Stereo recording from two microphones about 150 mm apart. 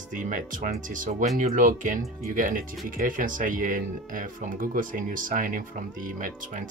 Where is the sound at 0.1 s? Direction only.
60° right (ahead or behind).